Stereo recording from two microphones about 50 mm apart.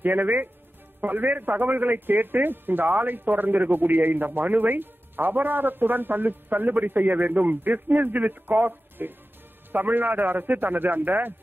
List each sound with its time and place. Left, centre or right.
0.0 s a man's voice: right